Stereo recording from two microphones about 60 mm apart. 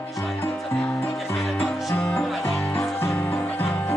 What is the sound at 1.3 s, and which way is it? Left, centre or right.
Music, centre.